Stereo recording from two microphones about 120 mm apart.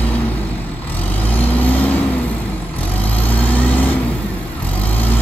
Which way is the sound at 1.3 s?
15° left (ahead or behind).